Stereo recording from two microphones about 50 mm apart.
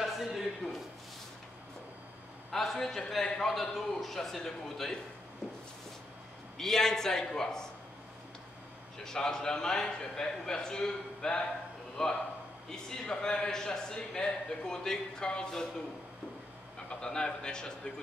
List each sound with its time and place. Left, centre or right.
0.0 s a sound: centre
2.5 s a man's voice: centre
6.6 s a man's voice: centre
9.0 s a man's voice: centre
17.0 s a man's voice: centre